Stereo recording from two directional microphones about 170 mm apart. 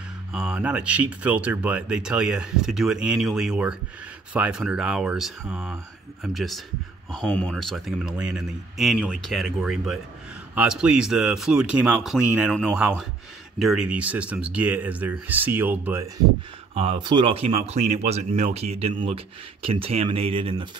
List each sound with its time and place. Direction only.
0.3 s speech: 5° right (ahead or behind)
16.7 s speech: 35° right (ahead or behind)